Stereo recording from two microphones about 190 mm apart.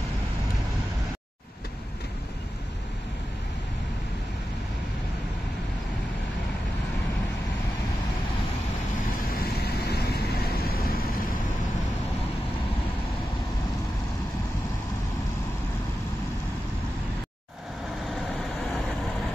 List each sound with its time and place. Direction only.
9.3 s vehicle: 55° left (ahead or behind)